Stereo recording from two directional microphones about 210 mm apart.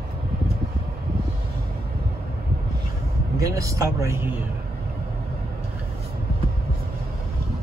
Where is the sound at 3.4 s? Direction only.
15° right (ahead or behind).